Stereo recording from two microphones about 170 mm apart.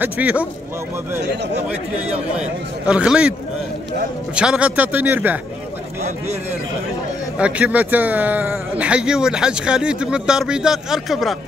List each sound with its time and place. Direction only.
0.0 s a man's voice: 10° right (ahead or behind)
1.2 s speech: 85° right
2.9 s speech: 5° right (ahead or behind)
4.4 s a man's voice: 5° right (ahead or behind)
7.3 s speech: 5° right (ahead or behind)